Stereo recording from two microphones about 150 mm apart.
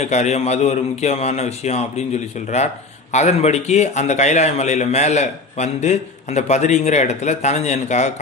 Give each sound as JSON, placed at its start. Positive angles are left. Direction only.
{"t": 0.0, "sound": "speech", "side_deg": 50}